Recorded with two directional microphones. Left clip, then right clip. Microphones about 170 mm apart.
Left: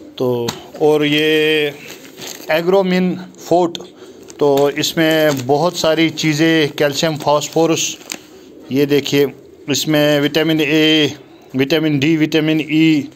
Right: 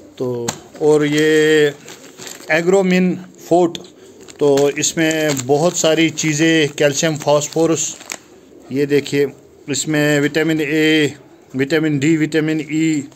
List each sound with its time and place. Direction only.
0.2 s a man's voice: centre (ahead or behind)